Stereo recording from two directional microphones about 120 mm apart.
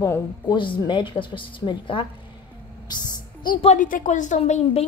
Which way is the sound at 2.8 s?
35° left (ahead or behind).